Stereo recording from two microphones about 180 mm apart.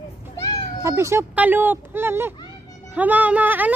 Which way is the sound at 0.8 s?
15° right (ahead or behind).